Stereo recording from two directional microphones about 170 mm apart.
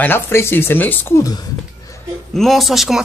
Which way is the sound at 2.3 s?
Centre (ahead or behind).